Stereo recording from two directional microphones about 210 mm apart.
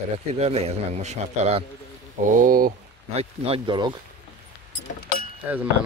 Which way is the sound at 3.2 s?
25° right (ahead or behind).